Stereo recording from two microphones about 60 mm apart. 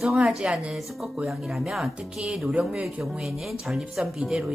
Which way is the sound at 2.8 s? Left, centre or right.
Centre.